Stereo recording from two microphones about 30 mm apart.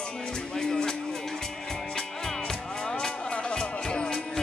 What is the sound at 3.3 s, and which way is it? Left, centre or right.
Music, left.